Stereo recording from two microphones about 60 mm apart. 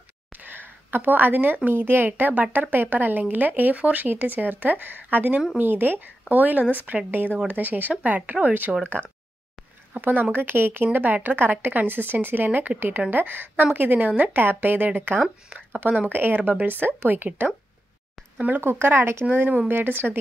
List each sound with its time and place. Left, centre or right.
0.3 s speech: right
9.9 s speech: right
15.8 s speech: right
16.1 s speech: right
18.6 s speech: right
19.3 s speech: right